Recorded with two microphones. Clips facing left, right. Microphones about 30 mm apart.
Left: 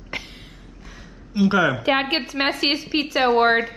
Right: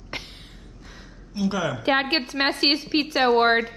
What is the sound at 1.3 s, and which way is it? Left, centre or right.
Speech, left.